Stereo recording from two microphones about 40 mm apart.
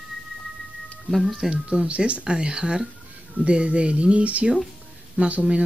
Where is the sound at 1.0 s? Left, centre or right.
Centre.